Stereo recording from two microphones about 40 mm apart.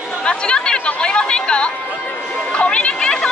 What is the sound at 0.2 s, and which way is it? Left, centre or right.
Speech, left.